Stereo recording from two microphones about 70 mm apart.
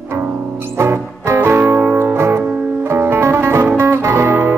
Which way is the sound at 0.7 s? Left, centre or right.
Right.